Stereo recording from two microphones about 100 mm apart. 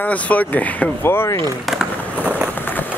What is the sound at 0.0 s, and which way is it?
Speech, 15° left (ahead or behind).